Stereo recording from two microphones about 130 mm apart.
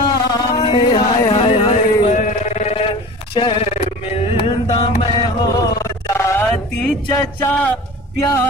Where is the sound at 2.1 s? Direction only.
70° left (ahead or behind); by 4.5 s 50° left (ahead or behind).